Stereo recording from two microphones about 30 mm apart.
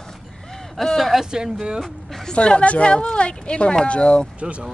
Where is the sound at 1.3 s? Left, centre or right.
Right.